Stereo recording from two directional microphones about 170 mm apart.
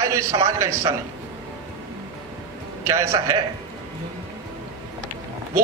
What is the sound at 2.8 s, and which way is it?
Speech, 15° right (ahead or behind).